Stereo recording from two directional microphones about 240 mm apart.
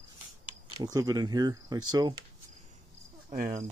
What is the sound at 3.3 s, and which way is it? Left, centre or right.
Cricket, right.